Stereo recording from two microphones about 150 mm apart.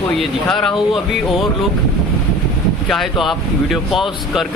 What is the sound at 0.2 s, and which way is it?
Speech, 5° left (ahead or behind).